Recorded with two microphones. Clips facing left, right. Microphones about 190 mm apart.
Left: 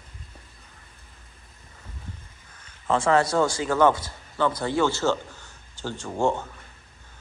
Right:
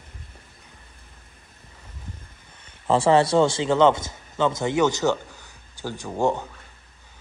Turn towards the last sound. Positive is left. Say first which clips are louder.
# right 1 dB
turn(degrees=-15)  # may be behind; listen again after turning